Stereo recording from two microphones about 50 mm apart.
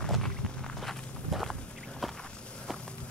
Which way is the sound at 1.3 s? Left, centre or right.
Centre.